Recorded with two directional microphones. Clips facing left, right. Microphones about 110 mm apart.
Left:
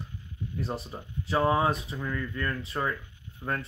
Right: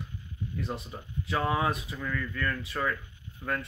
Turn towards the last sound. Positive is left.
turn(degrees=25)  # may be behind; listen again after turning